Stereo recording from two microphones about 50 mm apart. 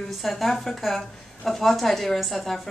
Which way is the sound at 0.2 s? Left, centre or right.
Centre.